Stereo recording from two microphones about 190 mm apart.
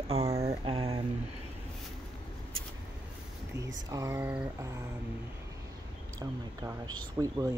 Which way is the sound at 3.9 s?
15° right (ahead or behind).